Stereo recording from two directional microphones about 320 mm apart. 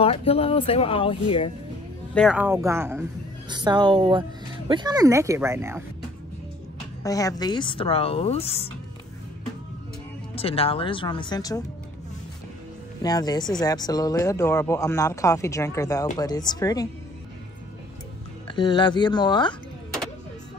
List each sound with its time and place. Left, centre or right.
0.0 s speech: centre
2.1 s a woman's voice: centre
7.0 s speech: centre
10.3 s speech: centre
13.0 s speech: centre
18.5 s speech: centre